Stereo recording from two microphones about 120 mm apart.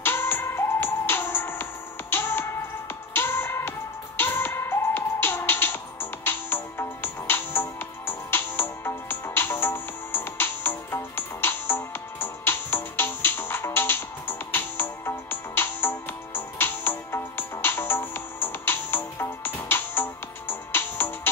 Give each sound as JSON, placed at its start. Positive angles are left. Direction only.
{"t": 0.0, "sound": "music", "side_deg": 20}